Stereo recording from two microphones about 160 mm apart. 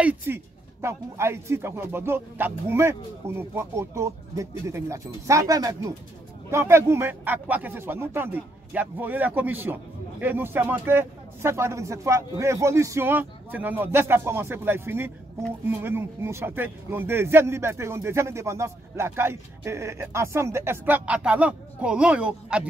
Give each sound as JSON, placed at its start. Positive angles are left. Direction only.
{"t": 0.0, "sound": "speech", "side_deg": -10}